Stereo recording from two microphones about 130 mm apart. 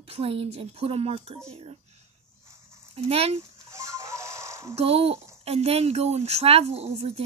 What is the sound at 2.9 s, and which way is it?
Speech, 50° right (ahead or behind).